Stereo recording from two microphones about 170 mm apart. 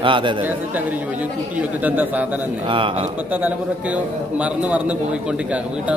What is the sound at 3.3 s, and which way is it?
A man's voice, 10° right (ahead or behind).